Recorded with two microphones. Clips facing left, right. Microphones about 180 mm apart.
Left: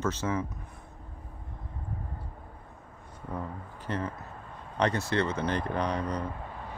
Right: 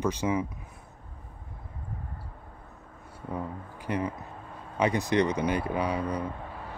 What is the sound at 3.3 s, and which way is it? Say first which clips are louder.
Speech: right 2 dB; 10° right (ahead or behind).